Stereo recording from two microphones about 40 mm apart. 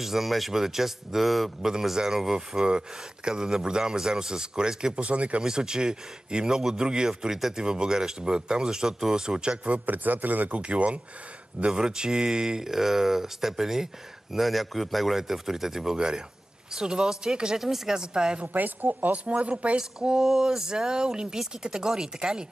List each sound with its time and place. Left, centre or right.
0.0 s speech: centre
1.7 s speech: centre
4.9 s speech: right
5.4 s speech: centre
9.8 s speech: right
10.5 s speech: right
11.6 s speech: centre
18.4 s speech: right
19.2 s speech: right
19.8 s speech: centre